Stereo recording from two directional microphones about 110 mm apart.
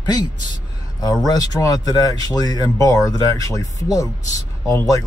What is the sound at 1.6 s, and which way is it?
Speech, 35° left (ahead or behind).